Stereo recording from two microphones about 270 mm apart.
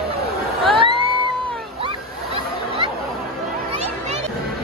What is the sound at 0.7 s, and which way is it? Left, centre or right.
Music, centre.